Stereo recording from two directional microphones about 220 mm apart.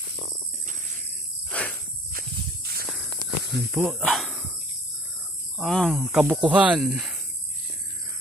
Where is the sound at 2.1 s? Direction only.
45° right (ahead or behind).